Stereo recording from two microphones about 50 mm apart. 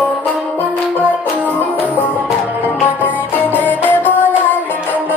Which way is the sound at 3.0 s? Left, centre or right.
Left.